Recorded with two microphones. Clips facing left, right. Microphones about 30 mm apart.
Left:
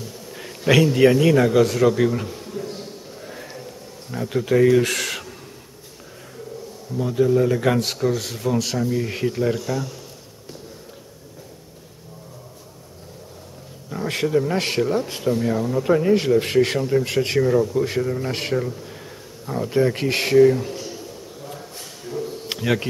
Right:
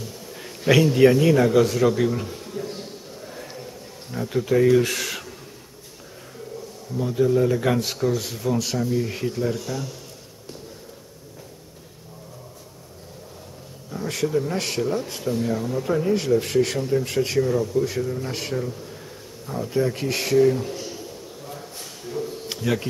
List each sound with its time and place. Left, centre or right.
0.3 s a man's voice: centre
3.2 s a sound: centre
4.1 s speech: centre
7.0 s speech: centre
13.8 s speech: left
15.8 s speech: left
17.4 s speech: left
20.3 s speech: centre
21.5 s a sound: centre
22.5 s speech: left